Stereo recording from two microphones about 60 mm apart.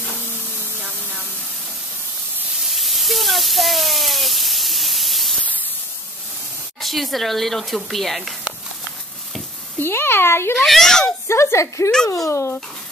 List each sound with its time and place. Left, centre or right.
2.7 s a sound: centre
6.8 s speech: centre
9.8 s speech: left
10.5 s speech: centre
11.2 s speech: left
12.3 s speech: left